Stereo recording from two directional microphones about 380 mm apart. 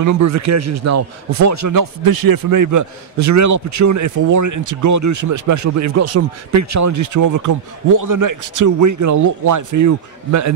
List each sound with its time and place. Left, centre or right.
0.0 s a man's voice: right